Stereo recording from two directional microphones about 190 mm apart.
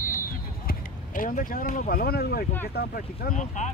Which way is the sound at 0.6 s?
45° left (ahead or behind).